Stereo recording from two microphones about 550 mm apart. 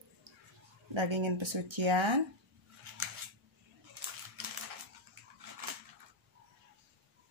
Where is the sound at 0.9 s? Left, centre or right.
Right.